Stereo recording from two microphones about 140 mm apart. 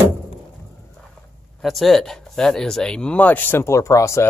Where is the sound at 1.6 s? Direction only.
Centre (ahead or behind).